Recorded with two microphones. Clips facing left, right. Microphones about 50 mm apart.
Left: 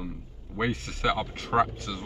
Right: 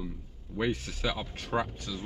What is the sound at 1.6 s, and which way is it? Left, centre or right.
Speech, left.